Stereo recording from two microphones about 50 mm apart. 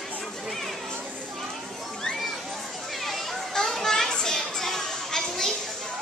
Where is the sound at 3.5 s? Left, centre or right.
Centre.